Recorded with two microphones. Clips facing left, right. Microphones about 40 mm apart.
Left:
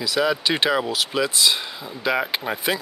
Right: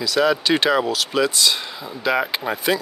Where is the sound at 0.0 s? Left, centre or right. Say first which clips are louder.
Right 3 dB; centre.